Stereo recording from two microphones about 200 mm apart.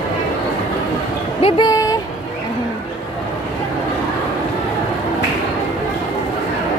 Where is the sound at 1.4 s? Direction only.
25° left (ahead or behind).